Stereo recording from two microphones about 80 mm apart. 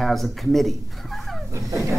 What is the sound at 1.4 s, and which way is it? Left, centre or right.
Speech, right.